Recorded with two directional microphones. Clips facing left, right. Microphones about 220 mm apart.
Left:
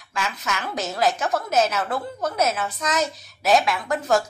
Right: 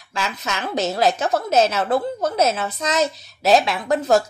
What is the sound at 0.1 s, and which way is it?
A woman's voice, 25° right (ahead or behind).